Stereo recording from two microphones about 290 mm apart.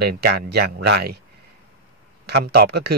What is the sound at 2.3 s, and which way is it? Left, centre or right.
Speech, right.